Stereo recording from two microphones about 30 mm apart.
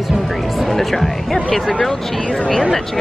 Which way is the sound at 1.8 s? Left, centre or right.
Centre.